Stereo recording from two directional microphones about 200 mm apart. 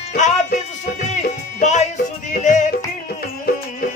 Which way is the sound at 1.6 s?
35° left (ahead or behind).